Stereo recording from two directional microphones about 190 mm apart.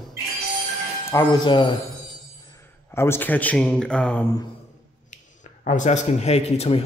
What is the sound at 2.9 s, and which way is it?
A man's voice, 15° left (ahead or behind).